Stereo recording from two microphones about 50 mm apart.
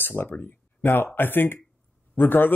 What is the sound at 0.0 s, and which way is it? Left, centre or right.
Speech, left.